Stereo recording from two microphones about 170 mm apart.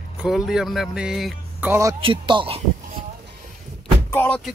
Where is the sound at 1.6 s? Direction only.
15° right (ahead or behind).